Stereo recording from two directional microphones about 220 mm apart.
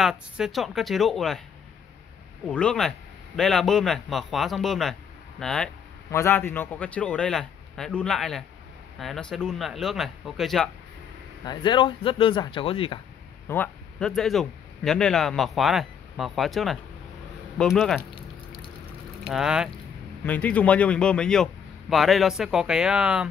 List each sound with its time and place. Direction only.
0.0 s a man's voice: centre (ahead or behind)
2.4 s a man's voice: 5° left (ahead or behind)
11.4 s speech: 20° left (ahead or behind)
13.5 s a man's voice: 5° left (ahead or behind)
18.1 s a sound: 25° left (ahead or behind)
19.2 s a man's voice: 5° right (ahead or behind)